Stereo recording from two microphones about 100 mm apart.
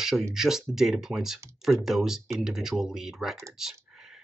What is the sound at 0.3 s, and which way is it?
Speech, 5° right (ahead or behind).